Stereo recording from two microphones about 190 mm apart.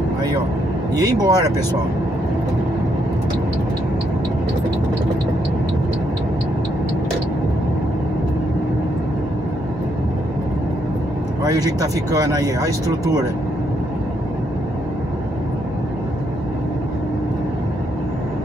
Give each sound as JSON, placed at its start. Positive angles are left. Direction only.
{"t": 0.9, "sound": "speech", "side_deg": -20}
{"t": 11.4, "sound": "speech", "side_deg": -20}